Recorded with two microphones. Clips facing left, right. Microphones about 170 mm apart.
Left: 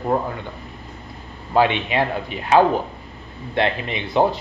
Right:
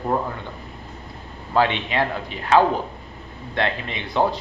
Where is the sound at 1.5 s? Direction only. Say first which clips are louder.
Left 2 dB; 15° left (ahead or behind).